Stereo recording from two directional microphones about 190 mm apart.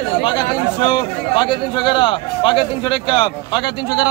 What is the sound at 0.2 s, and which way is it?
A man's voice, 25° left (ahead or behind).